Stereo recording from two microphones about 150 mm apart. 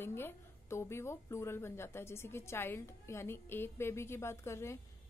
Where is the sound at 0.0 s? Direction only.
15° left (ahead or behind).